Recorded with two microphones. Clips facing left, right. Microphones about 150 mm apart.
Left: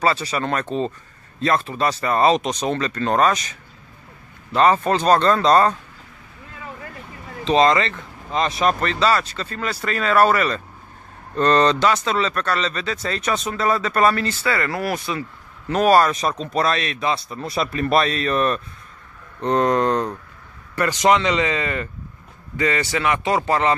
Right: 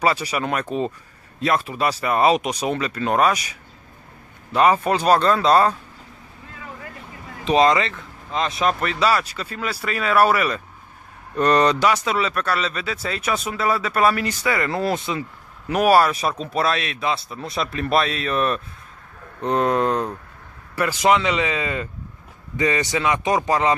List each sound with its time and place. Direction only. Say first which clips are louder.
0.0 s speech: even; 15° right (ahead or behind)
7.4 s speech: even; 10° right (ahead or behind)
15.7 s speech: left 1 dB; 10° right (ahead or behind)